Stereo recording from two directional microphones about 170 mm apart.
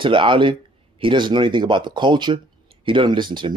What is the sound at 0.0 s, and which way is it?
Speech, 30° right (ahead or behind).